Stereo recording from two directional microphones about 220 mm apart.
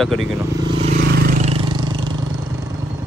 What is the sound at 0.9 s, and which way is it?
Vehicle, 50° right (ahead or behind).